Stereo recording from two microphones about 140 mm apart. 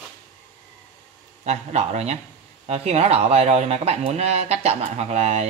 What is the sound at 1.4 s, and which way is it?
Speech, 55° right (ahead or behind).